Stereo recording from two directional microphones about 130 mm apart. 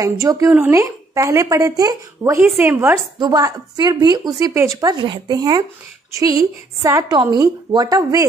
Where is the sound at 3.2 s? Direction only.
30° right (ahead or behind).